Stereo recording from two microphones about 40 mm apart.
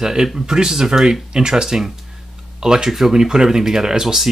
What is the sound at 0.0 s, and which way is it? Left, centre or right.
Speech, centre.